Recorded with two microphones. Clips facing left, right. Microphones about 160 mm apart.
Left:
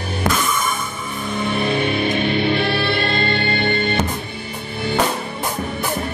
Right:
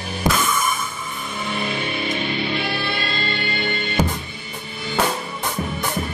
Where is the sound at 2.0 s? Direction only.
60° left (ahead or behind).